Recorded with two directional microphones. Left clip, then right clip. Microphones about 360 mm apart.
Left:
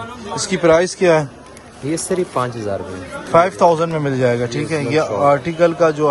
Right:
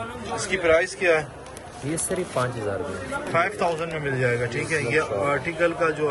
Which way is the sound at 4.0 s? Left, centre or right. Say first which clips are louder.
Left 7 dB; centre.